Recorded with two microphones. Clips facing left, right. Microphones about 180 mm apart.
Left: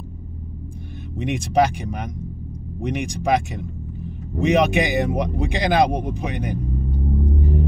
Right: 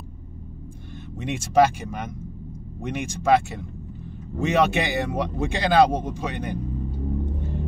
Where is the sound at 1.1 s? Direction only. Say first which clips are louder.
Left 5 dB; 15° left (ahead or behind).